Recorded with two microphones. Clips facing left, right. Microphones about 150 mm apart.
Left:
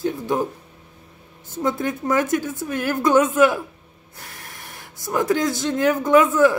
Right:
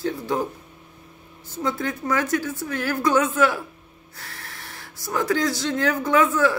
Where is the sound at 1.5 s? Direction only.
20° left (ahead or behind).